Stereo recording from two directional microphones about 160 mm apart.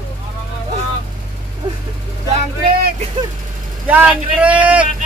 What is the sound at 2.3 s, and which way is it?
Vehicle, 60° right (ahead or behind).